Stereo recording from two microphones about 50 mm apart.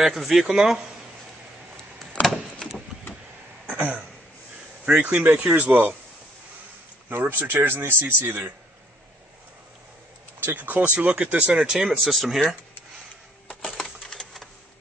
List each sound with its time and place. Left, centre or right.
0.0 s speech: centre
3.6 s throat clearing: right
4.8 s speech: centre
5.2 s speech: right
7.1 s speech: right
10.4 s speech: right
11.6 s speech: centre
12.0 s speech: centre
13.5 s coin: centre